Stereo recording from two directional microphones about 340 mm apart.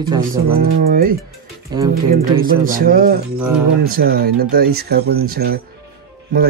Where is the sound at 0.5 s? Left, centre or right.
Right.